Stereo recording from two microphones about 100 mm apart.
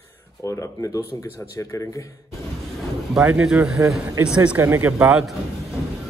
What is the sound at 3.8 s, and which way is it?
Speech, 25° right (ahead or behind).